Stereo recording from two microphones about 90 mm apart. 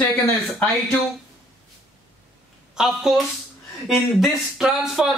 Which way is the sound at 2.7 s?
5° right (ahead or behind).